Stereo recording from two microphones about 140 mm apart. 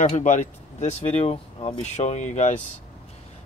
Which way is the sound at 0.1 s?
65° left (ahead or behind).